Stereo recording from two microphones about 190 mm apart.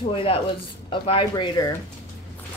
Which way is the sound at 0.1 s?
30° left (ahead or behind).